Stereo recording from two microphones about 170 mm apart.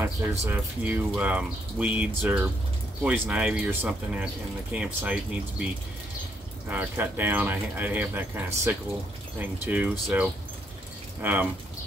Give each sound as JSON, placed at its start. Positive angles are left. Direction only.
{"t": 0.0, "sound": "speech", "side_deg": -10}
{"t": 6.7, "sound": "speech", "side_deg": -10}